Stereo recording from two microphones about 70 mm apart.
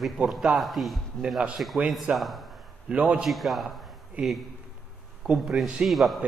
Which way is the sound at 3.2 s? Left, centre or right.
Centre.